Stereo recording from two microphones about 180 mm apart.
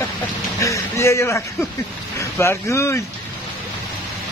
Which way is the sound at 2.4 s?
15° left (ahead or behind).